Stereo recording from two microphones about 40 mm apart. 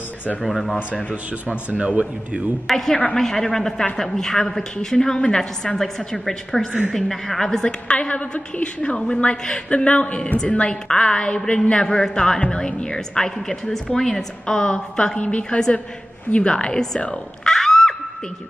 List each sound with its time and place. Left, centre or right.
0.4 s speech: centre
1.8 s a man's voice: right
2.6 s a woman's voice: centre
5.8 s a woman's voice: centre
7.6 s a woman's voice: left
15.1 s a woman's voice: left
16.4 s speech: centre